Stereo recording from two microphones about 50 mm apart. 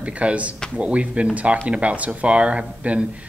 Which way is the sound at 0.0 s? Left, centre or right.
Right.